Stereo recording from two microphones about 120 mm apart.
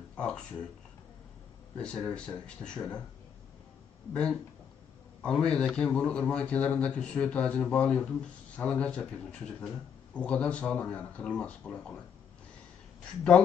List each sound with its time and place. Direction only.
0.1 s speech: 10° left (ahead or behind)
1.8 s speech: 10° left (ahead or behind)
4.1 s speech: 10° left (ahead or behind)